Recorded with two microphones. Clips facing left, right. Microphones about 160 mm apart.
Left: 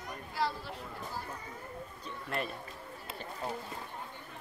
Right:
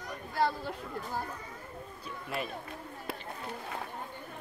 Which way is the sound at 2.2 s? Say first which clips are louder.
Even; centre (ahead or behind).